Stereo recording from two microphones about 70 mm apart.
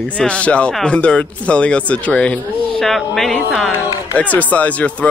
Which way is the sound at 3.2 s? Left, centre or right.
Centre.